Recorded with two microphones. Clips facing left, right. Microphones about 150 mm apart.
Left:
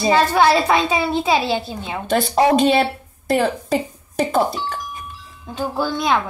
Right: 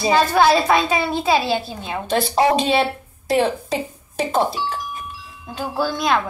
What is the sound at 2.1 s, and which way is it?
Speech, centre (ahead or behind).